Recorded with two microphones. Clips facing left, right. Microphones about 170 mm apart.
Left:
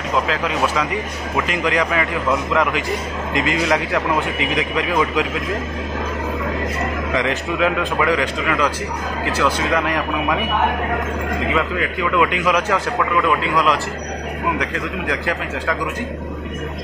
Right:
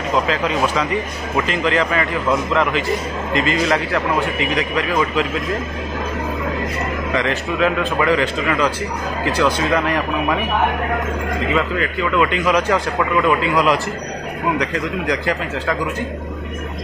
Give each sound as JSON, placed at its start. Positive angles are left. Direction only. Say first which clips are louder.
{"t": 0.3, "sound": "a man's voice", "louder": "right 2 dB", "side_deg": 5}
{"t": 7.2, "sound": "a man's voice", "louder": "right 1 dB", "side_deg": 15}
{"t": 11.5, "sound": "a man's voice", "louder": "right 1 dB", "side_deg": 10}
{"t": 13.4, "sound": "speech", "louder": "right 2 dB", "side_deg": -5}
{"t": 14.6, "sound": "a man's voice", "louder": "right 2 dB", "side_deg": 5}